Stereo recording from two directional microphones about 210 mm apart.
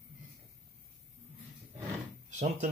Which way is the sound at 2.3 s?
30° right (ahead or behind).